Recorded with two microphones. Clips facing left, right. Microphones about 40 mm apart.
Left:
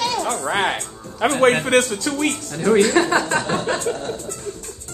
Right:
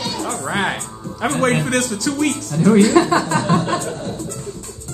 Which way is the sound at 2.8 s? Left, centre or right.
Left.